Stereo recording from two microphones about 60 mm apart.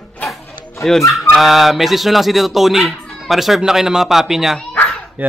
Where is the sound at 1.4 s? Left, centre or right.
Centre.